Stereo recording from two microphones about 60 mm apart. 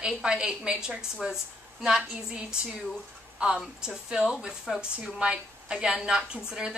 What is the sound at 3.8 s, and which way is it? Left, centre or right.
A woman's voice, centre.